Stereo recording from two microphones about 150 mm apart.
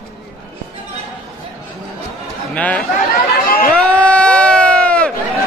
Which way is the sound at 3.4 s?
80° left.